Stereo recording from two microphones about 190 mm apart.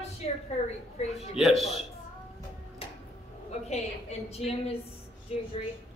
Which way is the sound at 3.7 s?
35° left (ahead or behind).